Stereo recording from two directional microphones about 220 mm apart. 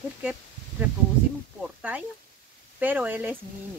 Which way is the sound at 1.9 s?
10° right (ahead or behind).